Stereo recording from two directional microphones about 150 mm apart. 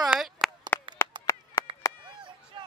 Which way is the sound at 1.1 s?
30° right (ahead or behind).